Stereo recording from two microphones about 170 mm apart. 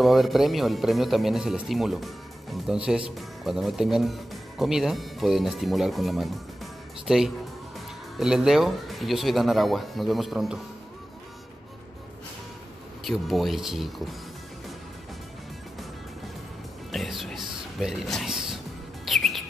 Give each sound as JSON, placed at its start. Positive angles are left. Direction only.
{"t": 0.0, "sound": "speech", "side_deg": 0}
{"t": 13.0, "sound": "speech", "side_deg": 0}
{"t": 16.9, "sound": "speech", "side_deg": 0}
{"t": 19.0, "sound": "music", "side_deg": 0}